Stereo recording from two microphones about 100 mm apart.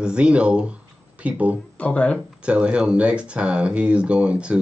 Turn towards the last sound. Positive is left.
turn(degrees=-10)  # may be behind; listen again after turning